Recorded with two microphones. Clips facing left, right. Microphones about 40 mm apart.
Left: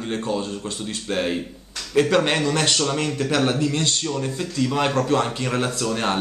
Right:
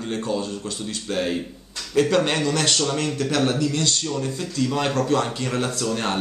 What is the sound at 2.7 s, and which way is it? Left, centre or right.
Speech, centre.